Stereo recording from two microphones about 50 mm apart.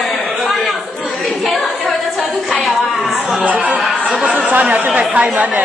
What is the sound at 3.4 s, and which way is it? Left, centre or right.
Speech, right.